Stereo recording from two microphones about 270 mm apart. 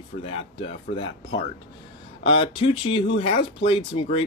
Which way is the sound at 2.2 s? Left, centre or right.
Centre.